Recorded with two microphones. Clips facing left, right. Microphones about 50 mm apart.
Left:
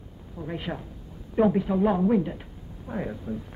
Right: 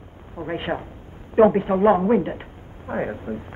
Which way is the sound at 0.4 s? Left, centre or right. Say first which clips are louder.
Right 7 dB; right.